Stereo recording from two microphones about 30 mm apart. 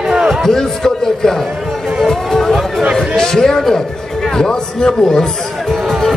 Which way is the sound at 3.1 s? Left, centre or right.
Centre.